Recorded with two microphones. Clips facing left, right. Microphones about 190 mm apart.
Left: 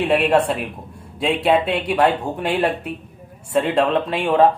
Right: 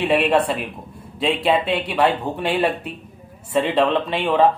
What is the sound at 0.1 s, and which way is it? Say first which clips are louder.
Speech: left 1 dB; 5° left (ahead or behind).